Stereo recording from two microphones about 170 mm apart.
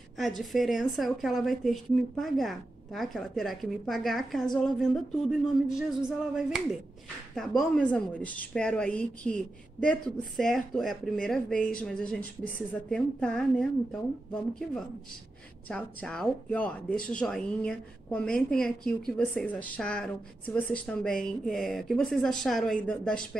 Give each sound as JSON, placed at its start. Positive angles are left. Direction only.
{"t": 0.4, "sound": "speech", "side_deg": 0}